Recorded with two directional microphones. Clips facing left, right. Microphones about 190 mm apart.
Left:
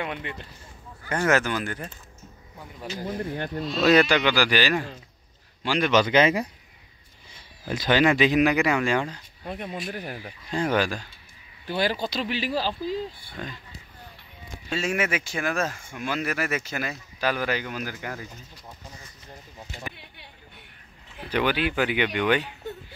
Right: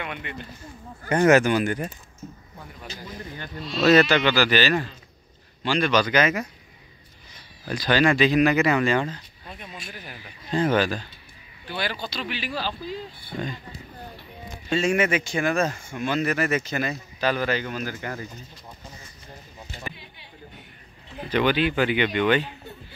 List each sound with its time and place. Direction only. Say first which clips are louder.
0.0 s speech: left 2 dB; 30° left (ahead or behind)
1.0 s speech: right 6 dB; 20° right (ahead or behind)
3.0 s speech: left 9 dB; 55° left (ahead or behind)
3.8 s a man's voice: right 2 dB; 15° left (ahead or behind)
5.9 s speech: left 3 dB; 25° left (ahead or behind)
9.4 s speech: left 8 dB; 55° left (ahead or behind)
10.5 s speech: right 3 dB; 10° left (ahead or behind)
11.6 s speech: left 5 dB; 40° left (ahead or behind)
14.7 s speech: right 5 dB; 5° left (ahead or behind)
21.3 s speech: right 3 dB; 10° left (ahead or behind)